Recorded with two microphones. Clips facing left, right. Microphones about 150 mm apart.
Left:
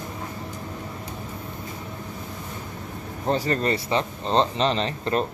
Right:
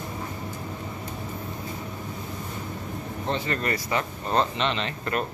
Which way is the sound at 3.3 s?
35° left (ahead or behind).